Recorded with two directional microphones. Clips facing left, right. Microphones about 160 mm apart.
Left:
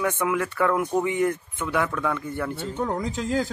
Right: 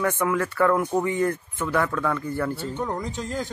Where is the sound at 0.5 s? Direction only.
5° left (ahead or behind).